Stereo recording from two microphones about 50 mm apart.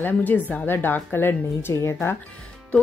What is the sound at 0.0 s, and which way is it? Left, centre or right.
Speech, left.